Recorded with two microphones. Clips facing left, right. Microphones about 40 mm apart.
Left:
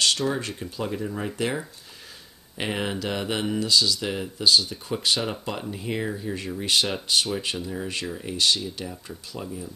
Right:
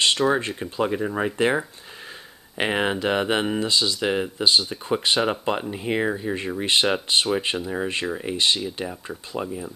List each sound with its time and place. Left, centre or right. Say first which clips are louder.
0.3 s speech: right 6 dB; right